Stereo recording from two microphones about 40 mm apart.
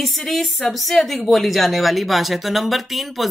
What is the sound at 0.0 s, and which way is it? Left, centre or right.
Speech, centre.